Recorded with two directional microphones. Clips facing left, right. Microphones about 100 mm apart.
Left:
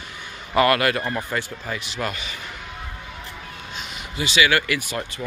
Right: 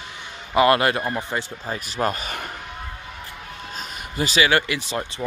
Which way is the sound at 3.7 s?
40° right (ahead or behind).